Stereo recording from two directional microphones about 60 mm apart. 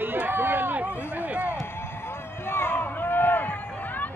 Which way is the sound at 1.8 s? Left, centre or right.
Left.